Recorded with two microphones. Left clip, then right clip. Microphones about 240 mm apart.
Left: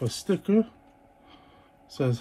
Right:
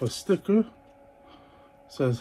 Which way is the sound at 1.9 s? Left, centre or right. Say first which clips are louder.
Right 2 dB; left.